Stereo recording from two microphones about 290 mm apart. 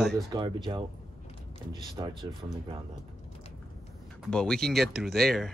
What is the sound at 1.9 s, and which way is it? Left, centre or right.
Speech, centre.